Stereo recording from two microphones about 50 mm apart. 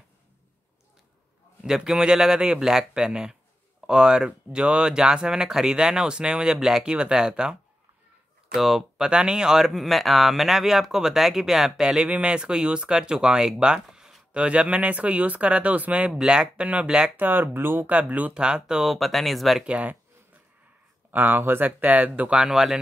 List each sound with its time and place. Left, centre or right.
1.6 s speech: centre
8.5 s speech: centre
12.1 s speech: right
13.8 s a sound: centre
14.3 s speech: right
16.1 s speech: centre
17.2 s speech: right
17.9 s speech: right
18.3 s speech: centre
18.9 s speech: centre
19.6 s speech: right
21.1 s speech: right
22.4 s speech: centre